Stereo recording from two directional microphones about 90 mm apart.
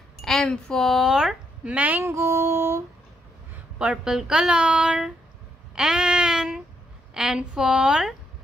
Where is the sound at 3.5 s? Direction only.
10° right (ahead or behind).